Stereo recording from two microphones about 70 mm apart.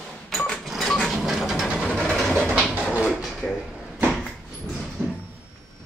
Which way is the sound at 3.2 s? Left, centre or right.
Centre.